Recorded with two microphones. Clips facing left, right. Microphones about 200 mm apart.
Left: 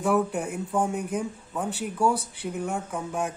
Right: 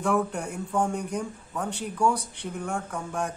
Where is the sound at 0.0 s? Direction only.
5° left (ahead or behind).